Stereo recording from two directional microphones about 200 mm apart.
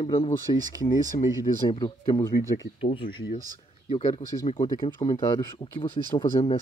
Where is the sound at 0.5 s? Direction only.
30° left (ahead or behind).